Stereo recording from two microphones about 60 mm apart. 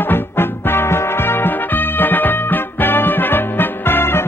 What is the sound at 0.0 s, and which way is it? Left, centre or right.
Music, left.